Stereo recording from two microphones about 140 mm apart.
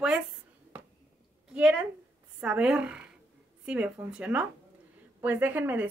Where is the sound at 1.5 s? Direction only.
5° right (ahead or behind).